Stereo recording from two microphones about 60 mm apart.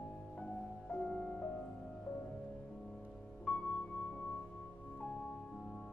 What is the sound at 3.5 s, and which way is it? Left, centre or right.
Music, centre.